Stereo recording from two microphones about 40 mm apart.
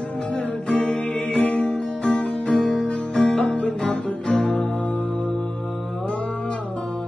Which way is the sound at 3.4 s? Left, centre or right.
Left.